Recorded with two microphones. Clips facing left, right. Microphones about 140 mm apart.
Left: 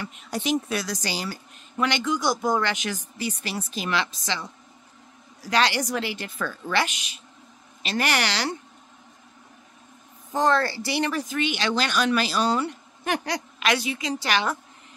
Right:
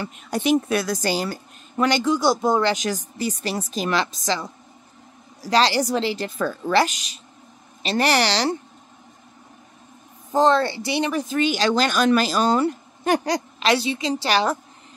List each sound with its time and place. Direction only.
0.3 s a woman's voice: 55° right (ahead or behind); by 8.5 s 35° right (ahead or behind)
10.3 s speech: 25° right (ahead or behind)
11.3 s a woman's voice: 40° right (ahead or behind)